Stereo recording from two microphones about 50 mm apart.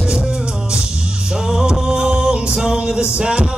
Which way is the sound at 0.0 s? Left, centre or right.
Centre.